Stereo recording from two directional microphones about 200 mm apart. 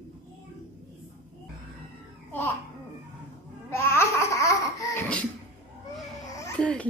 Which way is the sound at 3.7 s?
15° left (ahead or behind).